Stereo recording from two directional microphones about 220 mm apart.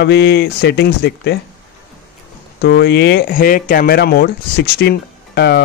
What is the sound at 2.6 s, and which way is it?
Speech, 50° left (ahead or behind).